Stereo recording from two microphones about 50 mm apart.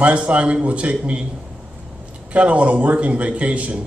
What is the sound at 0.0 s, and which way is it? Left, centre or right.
A man's voice, right.